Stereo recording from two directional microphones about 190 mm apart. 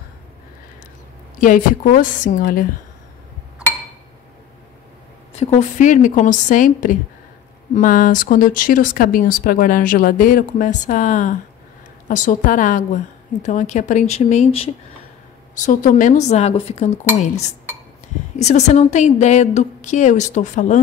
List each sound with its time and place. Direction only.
1.4 s speech: 45° left (ahead or behind)
5.4 s a woman's voice: 40° left (ahead or behind)
18.3 s a woman's voice: 35° left (ahead or behind)